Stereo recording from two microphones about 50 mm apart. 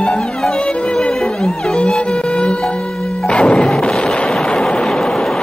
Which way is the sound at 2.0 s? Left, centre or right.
Left.